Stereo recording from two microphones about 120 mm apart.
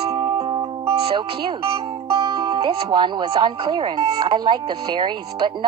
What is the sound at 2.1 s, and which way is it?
Speech, 50° right (ahead or behind).